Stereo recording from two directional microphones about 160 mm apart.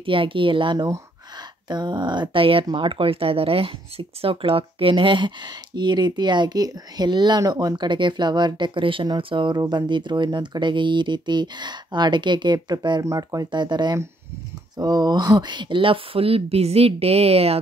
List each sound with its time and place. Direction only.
0.0 s speech: 35° right (ahead or behind)